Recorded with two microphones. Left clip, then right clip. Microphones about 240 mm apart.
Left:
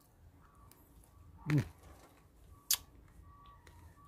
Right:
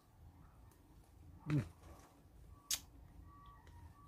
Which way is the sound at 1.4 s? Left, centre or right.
Left.